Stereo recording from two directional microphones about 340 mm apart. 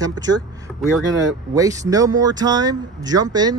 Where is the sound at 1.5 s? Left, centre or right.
Centre.